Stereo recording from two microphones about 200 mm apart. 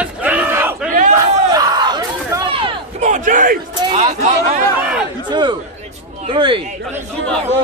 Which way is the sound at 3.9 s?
30° right (ahead or behind).